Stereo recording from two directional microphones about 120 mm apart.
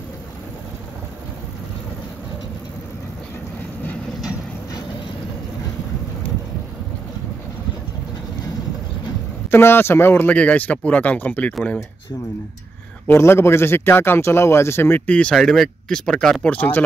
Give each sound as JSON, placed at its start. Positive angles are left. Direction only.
{"t": 9.5, "sound": "a man's voice", "side_deg": 20}
{"t": 13.0, "sound": "a man's voice", "side_deg": 20}
{"t": 16.5, "sound": "a man's voice", "side_deg": 15}